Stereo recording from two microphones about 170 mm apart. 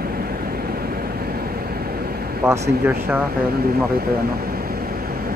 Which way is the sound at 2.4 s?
15° right (ahead or behind).